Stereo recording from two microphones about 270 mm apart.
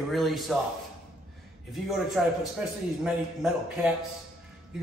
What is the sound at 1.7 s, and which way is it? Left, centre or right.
Speech, centre.